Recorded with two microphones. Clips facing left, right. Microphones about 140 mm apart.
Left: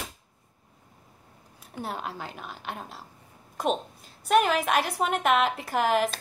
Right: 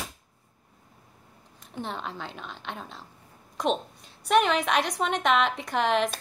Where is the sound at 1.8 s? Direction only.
10° left (ahead or behind).